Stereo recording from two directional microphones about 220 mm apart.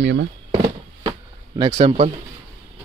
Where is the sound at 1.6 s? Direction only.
25° right (ahead or behind).